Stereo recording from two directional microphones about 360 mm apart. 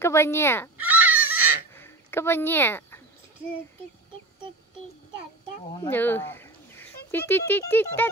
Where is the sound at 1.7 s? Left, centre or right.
Centre.